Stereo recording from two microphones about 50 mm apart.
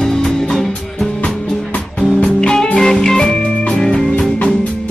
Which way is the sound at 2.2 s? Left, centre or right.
Centre.